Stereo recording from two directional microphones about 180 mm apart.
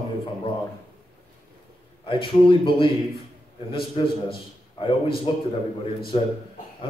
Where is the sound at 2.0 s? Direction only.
25° left (ahead or behind).